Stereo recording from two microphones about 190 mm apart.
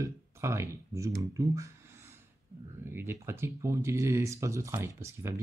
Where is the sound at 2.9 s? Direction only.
15° right (ahead or behind).